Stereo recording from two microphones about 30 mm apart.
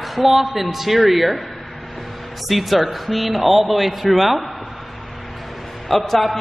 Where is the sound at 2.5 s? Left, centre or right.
Centre.